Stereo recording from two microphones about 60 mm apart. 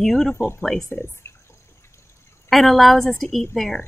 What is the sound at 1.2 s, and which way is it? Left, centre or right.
Drip, left.